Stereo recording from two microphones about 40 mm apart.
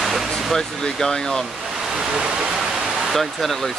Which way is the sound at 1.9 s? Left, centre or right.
Centre.